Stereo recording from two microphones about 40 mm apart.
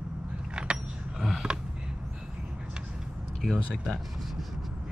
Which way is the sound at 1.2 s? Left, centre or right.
Centre.